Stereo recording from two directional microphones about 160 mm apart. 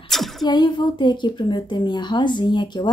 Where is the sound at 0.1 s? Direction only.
Centre (ahead or behind).